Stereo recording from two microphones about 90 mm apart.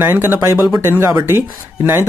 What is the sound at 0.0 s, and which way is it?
Speech, 25° right (ahead or behind).